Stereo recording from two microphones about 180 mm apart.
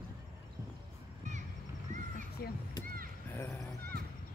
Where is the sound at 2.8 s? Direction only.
50° right (ahead or behind).